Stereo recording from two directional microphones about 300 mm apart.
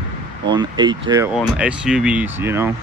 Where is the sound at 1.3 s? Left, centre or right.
Centre.